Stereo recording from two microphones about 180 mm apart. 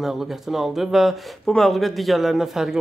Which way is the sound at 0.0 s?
Centre (ahead or behind).